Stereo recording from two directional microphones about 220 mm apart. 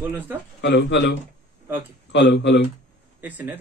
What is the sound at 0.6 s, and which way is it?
Speech, 50° left (ahead or behind).